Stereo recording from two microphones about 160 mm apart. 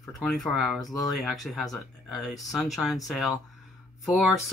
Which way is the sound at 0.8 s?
25° left (ahead or behind).